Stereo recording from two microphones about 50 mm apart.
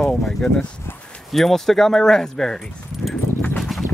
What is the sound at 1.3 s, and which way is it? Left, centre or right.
Speech, centre.